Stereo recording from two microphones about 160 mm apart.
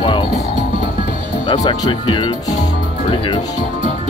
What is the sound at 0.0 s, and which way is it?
Speech, 30° left (ahead or behind).